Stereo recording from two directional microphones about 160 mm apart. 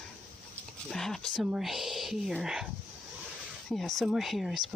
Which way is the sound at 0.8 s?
Centre (ahead or behind).